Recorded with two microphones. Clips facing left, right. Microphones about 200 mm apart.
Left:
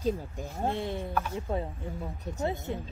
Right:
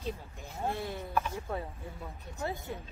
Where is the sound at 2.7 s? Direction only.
25° left (ahead or behind).